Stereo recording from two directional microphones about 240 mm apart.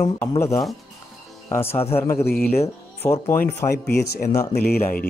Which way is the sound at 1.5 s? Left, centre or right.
Centre.